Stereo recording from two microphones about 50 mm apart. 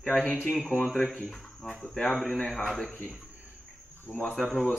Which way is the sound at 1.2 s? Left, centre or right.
Centre.